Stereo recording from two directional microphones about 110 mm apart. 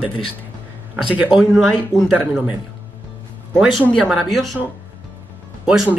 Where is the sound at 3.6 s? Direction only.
10° right (ahead or behind).